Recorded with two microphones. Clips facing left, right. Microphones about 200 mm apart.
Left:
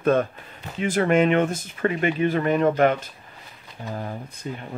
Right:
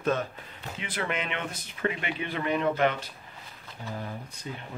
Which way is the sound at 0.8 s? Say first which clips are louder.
Left 14 dB; 45° left (ahead or behind).